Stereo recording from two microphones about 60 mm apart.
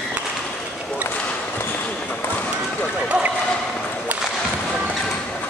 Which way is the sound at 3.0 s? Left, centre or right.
Centre.